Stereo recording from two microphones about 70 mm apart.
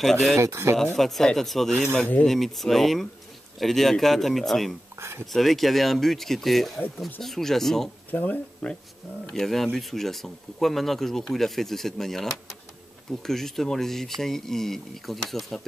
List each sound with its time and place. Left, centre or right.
0.0 s speech: centre
0.4 s speech: right
0.9 s speech: centre
8.1 s speech: left
9.3 s speech: centre